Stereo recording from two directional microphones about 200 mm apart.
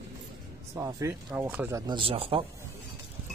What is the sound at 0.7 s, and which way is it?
Speech, 15° right (ahead or behind).